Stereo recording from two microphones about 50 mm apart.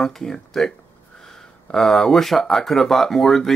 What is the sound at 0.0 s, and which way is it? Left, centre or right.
Speech, centre.